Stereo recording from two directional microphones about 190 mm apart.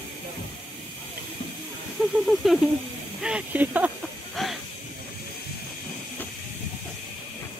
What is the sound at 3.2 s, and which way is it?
Speech, 5° right (ahead or behind).